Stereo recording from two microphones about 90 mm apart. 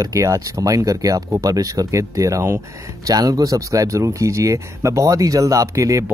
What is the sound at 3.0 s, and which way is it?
Speech, 45° right (ahead or behind).